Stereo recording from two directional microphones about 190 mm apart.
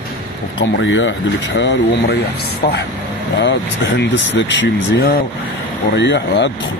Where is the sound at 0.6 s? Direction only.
70° left (ahead or behind).